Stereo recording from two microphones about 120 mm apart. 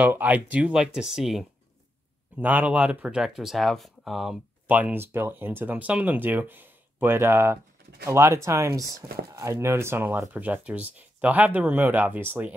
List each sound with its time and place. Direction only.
0.0 s speech: 15° right (ahead or behind)
2.3 s speech: 15° right (ahead or behind)
4.6 s speech: 15° right (ahead or behind)